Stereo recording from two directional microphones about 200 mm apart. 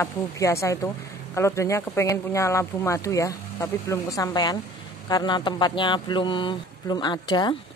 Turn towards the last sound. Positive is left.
turn(degrees=20)  # may be behind; listen again after turning